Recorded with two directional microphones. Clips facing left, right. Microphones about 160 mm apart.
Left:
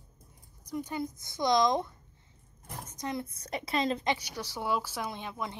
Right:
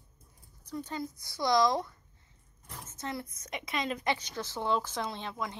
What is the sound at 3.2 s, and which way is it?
Speech, 30° left (ahead or behind).